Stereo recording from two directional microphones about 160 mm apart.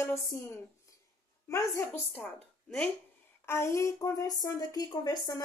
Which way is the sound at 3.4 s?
15° left (ahead or behind).